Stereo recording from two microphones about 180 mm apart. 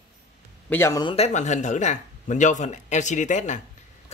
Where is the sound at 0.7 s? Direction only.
15° left (ahead or behind).